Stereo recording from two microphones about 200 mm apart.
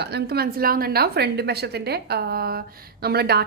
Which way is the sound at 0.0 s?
55° right (ahead or behind).